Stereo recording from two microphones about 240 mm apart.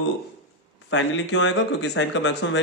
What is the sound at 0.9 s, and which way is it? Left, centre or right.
Speech, left.